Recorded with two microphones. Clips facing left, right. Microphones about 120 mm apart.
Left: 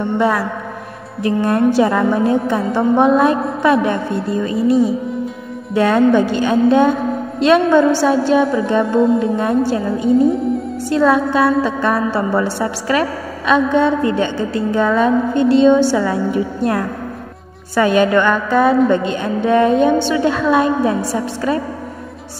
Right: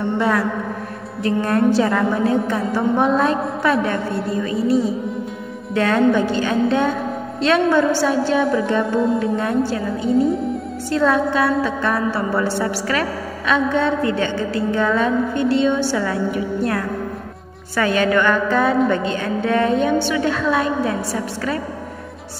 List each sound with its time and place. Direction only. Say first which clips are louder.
0.2 s a woman's voice: left 2 dB; 10° left (ahead or behind)
3.8 s a woman's voice: left 3 dB; 25° left (ahead or behind)
5.8 s a woman's voice: left 4 dB; 10° left (ahead or behind)
9.2 s a woman's voice: left 4 dB; 25° left (ahead or behind)
11.0 s a woman's voice: left 3 dB; 10° left (ahead or behind)